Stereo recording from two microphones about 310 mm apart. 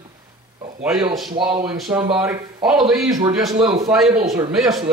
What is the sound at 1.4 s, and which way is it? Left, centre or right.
Speech, centre.